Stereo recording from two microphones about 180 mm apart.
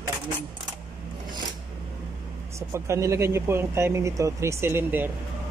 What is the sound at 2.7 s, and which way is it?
Speech, 15° right (ahead or behind).